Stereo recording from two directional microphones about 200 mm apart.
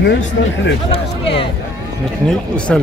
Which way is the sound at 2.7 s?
5° left (ahead or behind).